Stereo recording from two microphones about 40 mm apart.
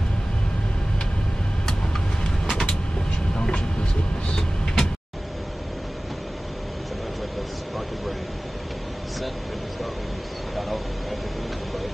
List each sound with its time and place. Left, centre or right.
2.5 s vehicle: centre
10.5 s vehicle: centre